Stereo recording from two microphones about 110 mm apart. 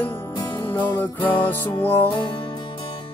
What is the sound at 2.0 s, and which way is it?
Music, 45° left (ahead or behind).